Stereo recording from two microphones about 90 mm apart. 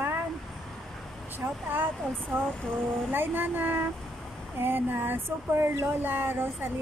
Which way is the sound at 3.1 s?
20° right (ahead or behind).